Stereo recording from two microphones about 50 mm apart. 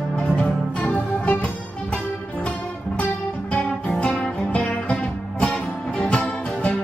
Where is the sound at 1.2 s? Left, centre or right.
Left.